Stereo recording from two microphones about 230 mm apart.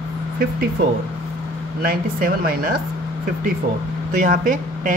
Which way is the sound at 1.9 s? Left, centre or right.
Right.